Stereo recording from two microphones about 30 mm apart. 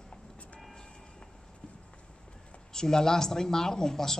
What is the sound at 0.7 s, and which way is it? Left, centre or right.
Train, left.